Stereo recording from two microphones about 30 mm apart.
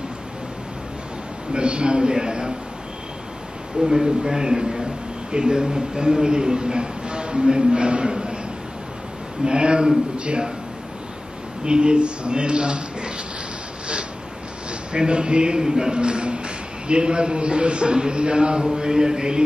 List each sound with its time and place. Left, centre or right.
1.5 s a man's voice: right
3.8 s a man's voice: right
9.4 s a man's voice: right
11.6 s a man's voice: right
14.9 s a man's voice: right
15.6 s a man's voice: centre
15.9 s a man's voice: right